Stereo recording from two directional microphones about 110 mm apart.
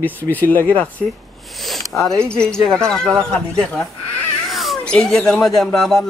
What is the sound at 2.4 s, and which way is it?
Speech, 5° left (ahead or behind).